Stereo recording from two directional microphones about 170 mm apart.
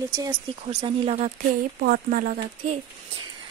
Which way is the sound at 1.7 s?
60° right (ahead or behind).